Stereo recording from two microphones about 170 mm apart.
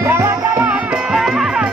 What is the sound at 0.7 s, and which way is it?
Music, 5° right (ahead or behind).